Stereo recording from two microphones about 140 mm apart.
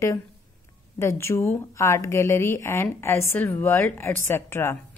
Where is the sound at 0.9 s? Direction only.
20° left (ahead or behind).